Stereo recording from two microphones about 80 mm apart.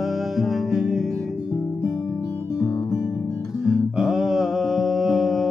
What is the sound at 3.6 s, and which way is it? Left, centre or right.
Music, centre.